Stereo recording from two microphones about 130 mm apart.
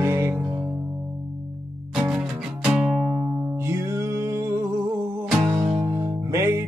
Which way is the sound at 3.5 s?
20° right (ahead or behind).